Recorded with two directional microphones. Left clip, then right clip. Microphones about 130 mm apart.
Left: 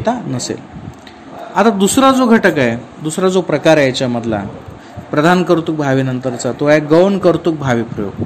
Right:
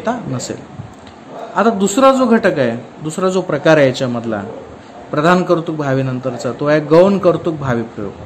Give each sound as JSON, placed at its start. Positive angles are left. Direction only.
{"t": 0.0, "sound": "speech", "side_deg": 25}
{"t": 1.5, "sound": "a man's voice", "side_deg": 40}
{"t": 5.1, "sound": "a man's voice", "side_deg": 40}